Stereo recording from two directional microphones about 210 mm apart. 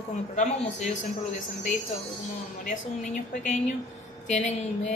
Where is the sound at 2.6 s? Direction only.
35° left (ahead or behind).